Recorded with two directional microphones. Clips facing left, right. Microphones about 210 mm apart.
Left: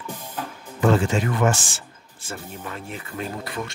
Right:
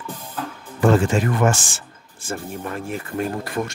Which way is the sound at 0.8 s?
50° right (ahead or behind).